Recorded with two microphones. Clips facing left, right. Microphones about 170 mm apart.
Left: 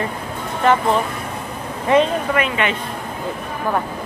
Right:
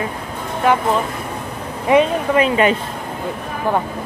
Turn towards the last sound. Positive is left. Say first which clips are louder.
# right 5 dB
turn(degrees=-35)  # may be behind; listen again after turning